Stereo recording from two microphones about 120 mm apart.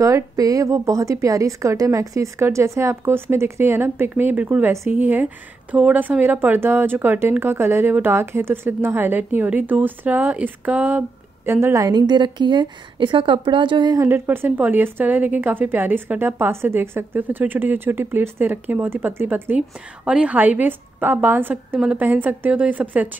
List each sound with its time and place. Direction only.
0.0 s a woman's voice: 30° right (ahead or behind)
14.0 s a woman's voice: 20° right (ahead or behind)